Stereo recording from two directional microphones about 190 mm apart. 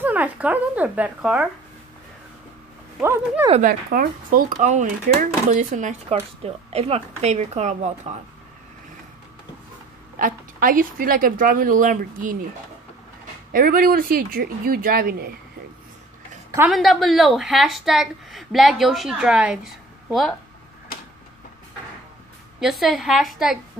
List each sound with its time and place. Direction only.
0.0 s speech: 10° right (ahead or behind)
3.0 s speech: 15° right (ahead or behind)
3.6 s a woman's voice: 50° right (ahead or behind)
10.1 s speech: 45° right (ahead or behind)
13.5 s speech: 50° right (ahead or behind)
16.5 s a woman's voice: centre (ahead or behind)
22.6 s a woman's voice: centre (ahead or behind)